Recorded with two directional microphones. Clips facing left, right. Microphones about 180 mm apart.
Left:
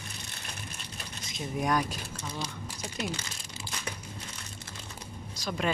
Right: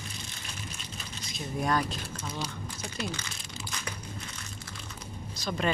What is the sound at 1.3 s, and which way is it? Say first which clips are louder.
Speech: even; 15° left (ahead or behind).